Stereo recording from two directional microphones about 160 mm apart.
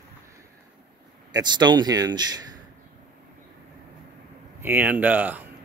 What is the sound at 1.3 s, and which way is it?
Speech, 25° right (ahead or behind).